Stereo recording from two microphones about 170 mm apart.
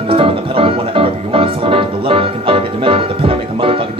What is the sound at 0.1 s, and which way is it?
Music, 30° right (ahead or behind).